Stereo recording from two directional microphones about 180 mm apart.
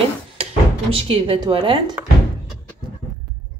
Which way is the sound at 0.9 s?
30° right (ahead or behind).